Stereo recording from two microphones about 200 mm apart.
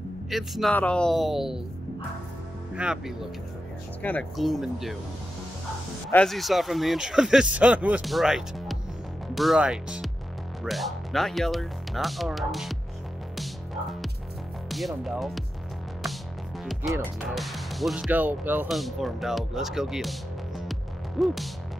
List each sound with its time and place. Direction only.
0.3 s speech: centre (ahead or behind)
2.7 s speech: 5° right (ahead or behind)
6.1 s speech: centre (ahead or behind)
14.7 s speech: centre (ahead or behind)
17.3 s speech: centre (ahead or behind)